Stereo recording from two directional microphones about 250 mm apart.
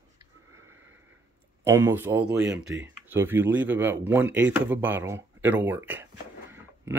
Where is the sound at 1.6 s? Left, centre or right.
Centre.